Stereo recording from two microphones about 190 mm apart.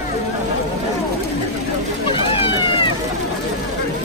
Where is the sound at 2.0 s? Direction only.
25° left (ahead or behind).